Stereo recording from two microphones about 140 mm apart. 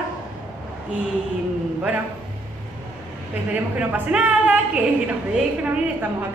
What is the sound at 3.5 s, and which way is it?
A woman's voice, 10° right (ahead or behind).